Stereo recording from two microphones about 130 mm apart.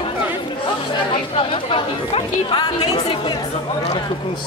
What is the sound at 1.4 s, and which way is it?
Chatter, 45° left (ahead or behind).